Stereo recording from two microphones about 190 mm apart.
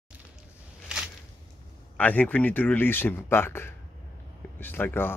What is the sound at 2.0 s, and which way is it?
Speech, 10° left (ahead or behind).